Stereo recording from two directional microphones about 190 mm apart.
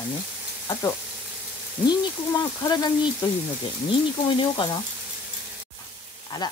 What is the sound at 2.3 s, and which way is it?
Speech, 20° left (ahead or behind).